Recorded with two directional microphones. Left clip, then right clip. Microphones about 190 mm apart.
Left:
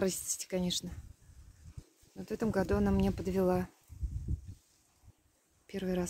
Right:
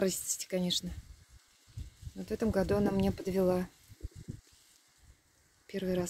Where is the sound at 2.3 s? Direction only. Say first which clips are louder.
Right 2 dB; 5° left (ahead or behind).